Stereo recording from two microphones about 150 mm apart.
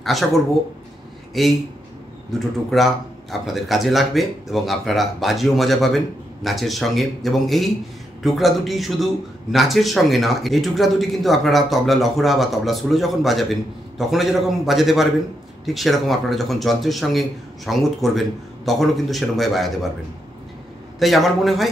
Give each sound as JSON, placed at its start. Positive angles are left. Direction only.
{"t": 0.0, "sound": "speech", "side_deg": 0}
{"t": 2.7, "sound": "speech", "side_deg": 0}
{"t": 21.0, "sound": "speech", "side_deg": 0}